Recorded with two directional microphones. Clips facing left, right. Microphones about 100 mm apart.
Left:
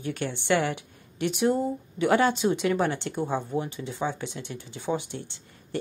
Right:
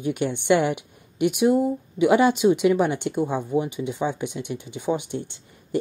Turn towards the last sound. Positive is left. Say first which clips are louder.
# right 7 dB
turn(degrees=-20)  # may be behind; listen again after turning